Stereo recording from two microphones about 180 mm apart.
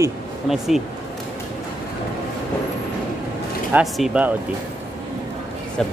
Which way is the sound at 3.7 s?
5° right (ahead or behind).